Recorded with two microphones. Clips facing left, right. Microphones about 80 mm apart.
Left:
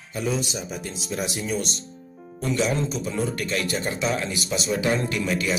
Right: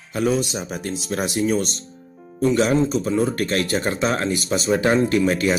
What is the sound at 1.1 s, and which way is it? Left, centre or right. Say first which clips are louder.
Speech: right 5 dB; right.